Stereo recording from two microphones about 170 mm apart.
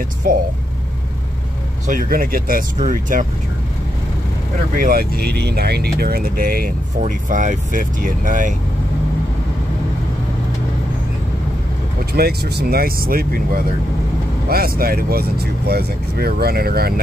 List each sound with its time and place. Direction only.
0.2 s speech: 55° right (ahead or behind)
1.9 s speech: 55° right (ahead or behind)
4.7 s speech: 60° right (ahead or behind)
12.1 s speech: 65° right (ahead or behind)